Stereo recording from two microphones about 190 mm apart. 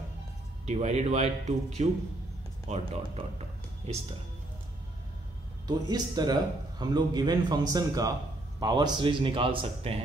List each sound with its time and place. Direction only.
0.7 s a man's voice: 35° right (ahead or behind)
5.7 s a man's voice: 20° right (ahead or behind)